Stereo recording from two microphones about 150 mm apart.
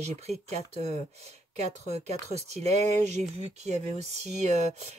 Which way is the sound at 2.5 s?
45° right (ahead or behind).